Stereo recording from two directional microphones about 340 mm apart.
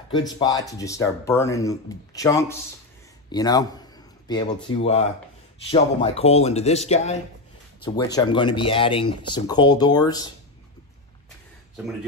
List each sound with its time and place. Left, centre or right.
0.1 s speech: centre